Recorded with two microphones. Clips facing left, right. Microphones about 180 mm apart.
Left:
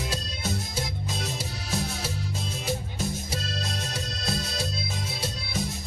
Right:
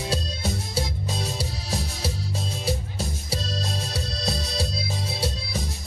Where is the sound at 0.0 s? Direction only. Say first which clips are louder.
Right 4 dB; 30° right (ahead or behind).